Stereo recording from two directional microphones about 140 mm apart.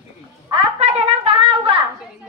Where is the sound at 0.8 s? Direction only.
50° right (ahead or behind).